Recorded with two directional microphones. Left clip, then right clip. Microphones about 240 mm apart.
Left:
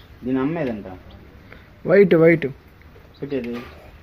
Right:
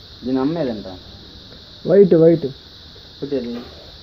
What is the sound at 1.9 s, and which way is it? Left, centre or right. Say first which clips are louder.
Speech: right 2 dB; centre.